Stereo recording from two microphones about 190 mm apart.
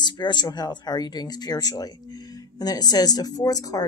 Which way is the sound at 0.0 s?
20° left (ahead or behind).